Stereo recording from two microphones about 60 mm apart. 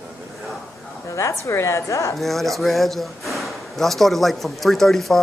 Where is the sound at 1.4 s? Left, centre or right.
Left.